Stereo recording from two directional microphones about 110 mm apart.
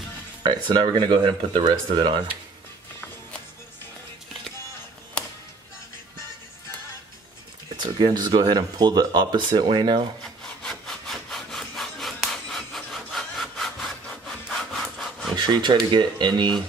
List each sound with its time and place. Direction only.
0.4 s speech: 45° right (ahead or behind)
7.7 s speech: 40° right (ahead or behind)
10.4 s sawing: 5° left (ahead or behind)
15.3 s speech: 40° right (ahead or behind)